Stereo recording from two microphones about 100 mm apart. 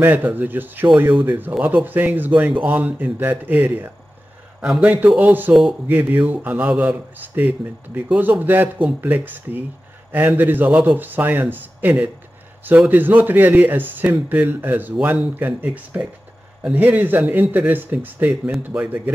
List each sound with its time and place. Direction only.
0.0 s speech: 15° right (ahead or behind)